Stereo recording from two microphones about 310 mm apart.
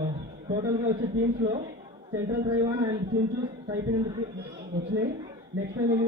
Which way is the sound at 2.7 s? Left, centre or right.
Centre.